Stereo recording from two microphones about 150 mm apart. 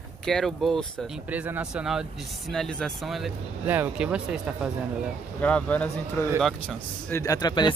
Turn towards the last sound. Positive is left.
turn(degrees=30)  # may be behind; listen again after turning